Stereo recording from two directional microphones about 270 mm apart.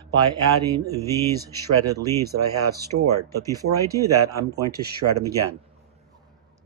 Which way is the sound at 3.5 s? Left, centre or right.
Centre.